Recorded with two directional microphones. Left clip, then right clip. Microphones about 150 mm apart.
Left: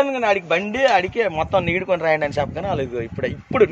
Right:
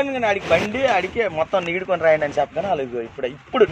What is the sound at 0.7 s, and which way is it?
A man's voice, 25° left (ahead or behind).